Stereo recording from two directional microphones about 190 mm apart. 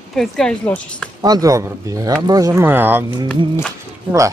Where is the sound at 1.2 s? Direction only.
20° right (ahead or behind).